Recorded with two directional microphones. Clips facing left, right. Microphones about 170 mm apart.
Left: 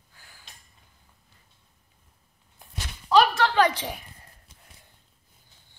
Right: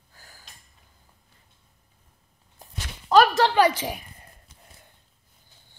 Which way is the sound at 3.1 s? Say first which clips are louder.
Right 2 dB; 45° right (ahead or behind).